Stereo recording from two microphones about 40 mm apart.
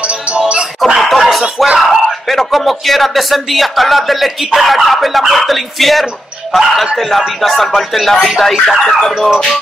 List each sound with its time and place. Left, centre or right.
0.3 s music: right
0.9 s snicker: centre
1.8 s speech: centre